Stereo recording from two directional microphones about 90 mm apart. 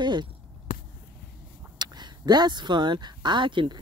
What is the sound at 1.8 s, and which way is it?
Speech, 50° right (ahead or behind).